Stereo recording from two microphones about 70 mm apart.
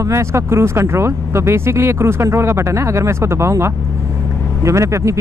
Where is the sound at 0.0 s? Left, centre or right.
Right.